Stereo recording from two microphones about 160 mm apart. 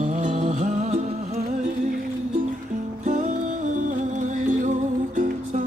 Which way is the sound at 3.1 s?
50° right (ahead or behind).